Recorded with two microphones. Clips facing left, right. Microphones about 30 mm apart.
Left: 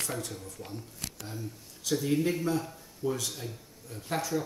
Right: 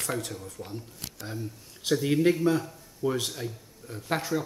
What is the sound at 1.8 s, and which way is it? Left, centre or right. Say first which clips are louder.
A man's voice: right 4 dB; right.